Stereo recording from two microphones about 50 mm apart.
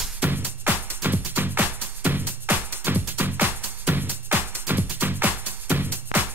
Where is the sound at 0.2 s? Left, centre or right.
Right.